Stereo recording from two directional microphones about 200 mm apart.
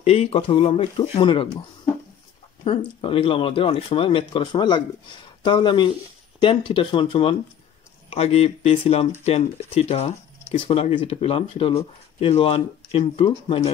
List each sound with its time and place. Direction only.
0.0 s speech: 30° left (ahead or behind)
2.6 s speech: 25° left (ahead or behind)